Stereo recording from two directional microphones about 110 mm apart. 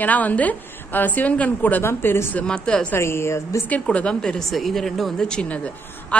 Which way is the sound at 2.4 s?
10° left (ahead or behind).